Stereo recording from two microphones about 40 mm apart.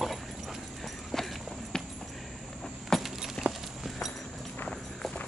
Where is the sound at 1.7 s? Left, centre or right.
Centre.